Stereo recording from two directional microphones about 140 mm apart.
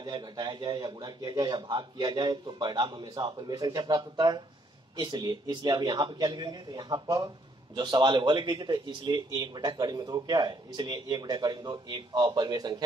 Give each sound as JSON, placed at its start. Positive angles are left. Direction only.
{"t": 0.0, "sound": "speech", "side_deg": -30}